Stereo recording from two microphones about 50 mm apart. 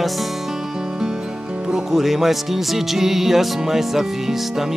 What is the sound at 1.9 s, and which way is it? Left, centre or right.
Music, centre.